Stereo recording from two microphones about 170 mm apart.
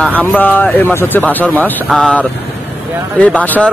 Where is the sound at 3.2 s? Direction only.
5° left (ahead or behind).